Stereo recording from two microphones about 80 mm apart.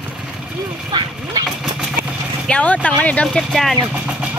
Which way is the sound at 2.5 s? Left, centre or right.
Centre.